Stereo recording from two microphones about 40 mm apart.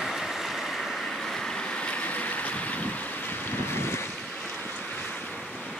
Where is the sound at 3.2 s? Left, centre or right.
Left.